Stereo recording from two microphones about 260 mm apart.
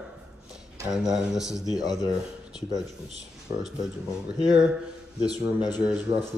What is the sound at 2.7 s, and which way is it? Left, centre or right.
Speech, right.